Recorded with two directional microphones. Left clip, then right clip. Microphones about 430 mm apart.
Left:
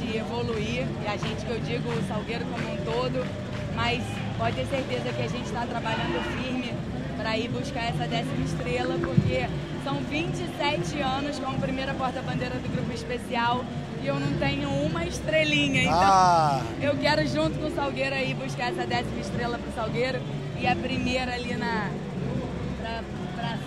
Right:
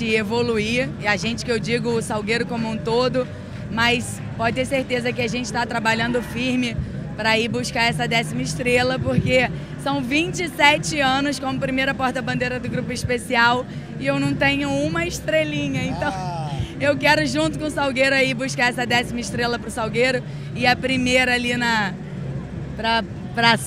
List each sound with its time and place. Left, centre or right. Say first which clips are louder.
0.0 s speech: right 10 dB; right
2.9 s speech: right 10 dB; right
7.2 s speech: right 10 dB; right
15.9 s speech: left 7 dB; left
16.8 s speech: right 8 dB; right
20.6 s speech: right 8 dB; right
22.8 s speech: right 16 dB; right